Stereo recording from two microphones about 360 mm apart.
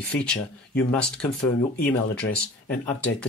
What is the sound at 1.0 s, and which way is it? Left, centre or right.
Speech, left.